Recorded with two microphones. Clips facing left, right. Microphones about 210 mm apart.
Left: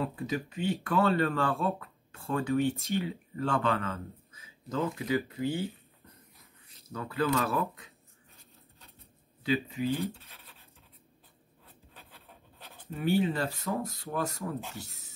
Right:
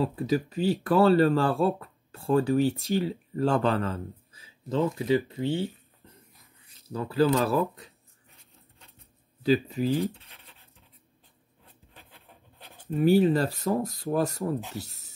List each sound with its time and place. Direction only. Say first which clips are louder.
0.0 s speech: right 7 dB; 35° right (ahead or behind)
9.4 s speech: right 6 dB; 35° right (ahead or behind)
13.0 s speech: right 7 dB; 40° right (ahead or behind)